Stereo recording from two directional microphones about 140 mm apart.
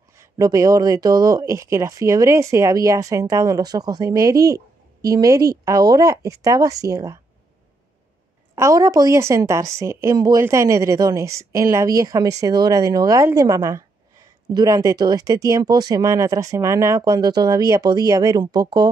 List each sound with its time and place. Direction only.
0.1 s speech: 20° right (ahead or behind)
8.5 s speech: 20° right (ahead or behind)